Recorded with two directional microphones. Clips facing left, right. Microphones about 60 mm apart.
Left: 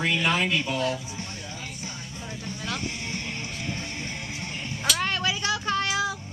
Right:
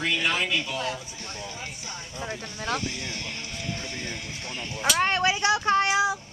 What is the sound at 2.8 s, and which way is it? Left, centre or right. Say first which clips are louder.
Music: even; left.